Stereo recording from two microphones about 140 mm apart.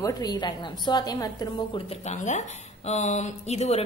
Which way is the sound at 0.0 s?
30° left (ahead or behind).